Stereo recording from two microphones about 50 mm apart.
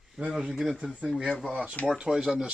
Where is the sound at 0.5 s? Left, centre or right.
Centre.